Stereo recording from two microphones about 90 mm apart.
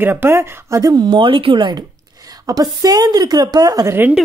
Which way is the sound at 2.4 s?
45° right (ahead or behind).